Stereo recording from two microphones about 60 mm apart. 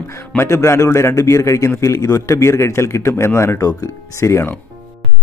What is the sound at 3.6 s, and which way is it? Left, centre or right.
Speech, left.